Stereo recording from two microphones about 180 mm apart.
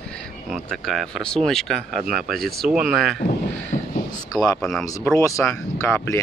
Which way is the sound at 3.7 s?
40° left (ahead or behind).